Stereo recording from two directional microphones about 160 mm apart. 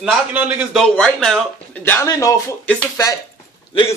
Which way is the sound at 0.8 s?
5° left (ahead or behind).